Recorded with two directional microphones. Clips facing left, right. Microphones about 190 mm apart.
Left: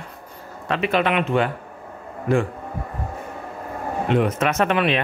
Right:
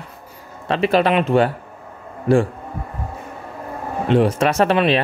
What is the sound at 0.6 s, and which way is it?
Speech, 30° right (ahead or behind).